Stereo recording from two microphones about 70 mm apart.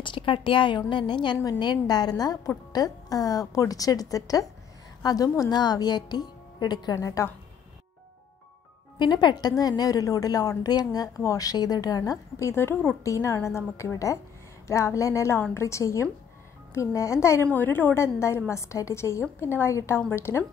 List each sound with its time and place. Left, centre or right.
0.7 s a woman's voice: left
1.4 s a woman's voice: left
5.5 s speech: left
7.0 s speech: left
8.9 s a woman's voice: left
10.6 s a woman's voice: left
12.5 s a woman's voice: left
13.0 s speech: left
17.5 s a woman's voice: left